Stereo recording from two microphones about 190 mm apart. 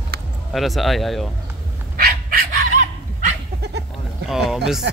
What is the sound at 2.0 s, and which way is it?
Dog, 50° right (ahead or behind).